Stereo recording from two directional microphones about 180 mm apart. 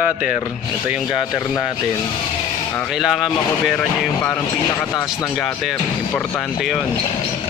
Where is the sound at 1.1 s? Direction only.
20° left (ahead or behind).